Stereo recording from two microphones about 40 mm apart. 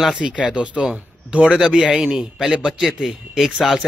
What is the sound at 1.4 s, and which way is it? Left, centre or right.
A man's voice, centre.